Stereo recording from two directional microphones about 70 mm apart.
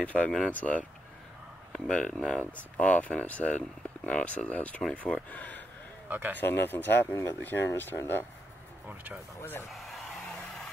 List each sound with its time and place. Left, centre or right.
0.0 s speech: centre
1.9 s speech: centre
6.0 s speech: right
6.3 s speech: left
8.8 s speech: right
9.4 s speech: left
9.7 s a sound: centre